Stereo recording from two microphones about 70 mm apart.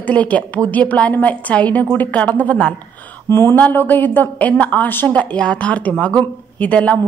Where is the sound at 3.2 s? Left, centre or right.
Left.